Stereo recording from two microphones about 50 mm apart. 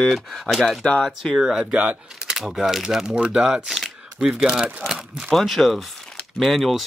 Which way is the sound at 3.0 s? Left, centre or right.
Centre.